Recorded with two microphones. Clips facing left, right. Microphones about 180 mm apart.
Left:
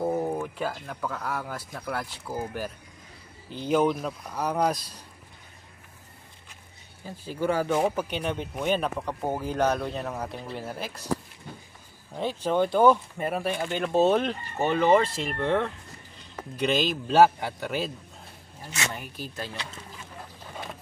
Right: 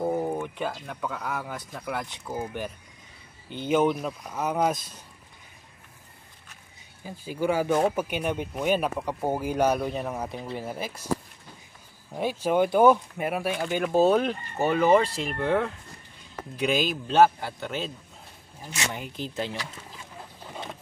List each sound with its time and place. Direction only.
0.0 s speech: centre (ahead or behind)
7.1 s speech: 10° right (ahead or behind)
12.1 s a man's voice: 10° right (ahead or behind); by 17.9 s 5° left (ahead or behind)
18.6 s speech: 20° right (ahead or behind)